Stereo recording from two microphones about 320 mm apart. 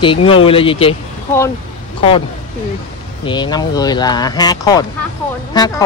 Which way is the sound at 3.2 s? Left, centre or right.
Centre.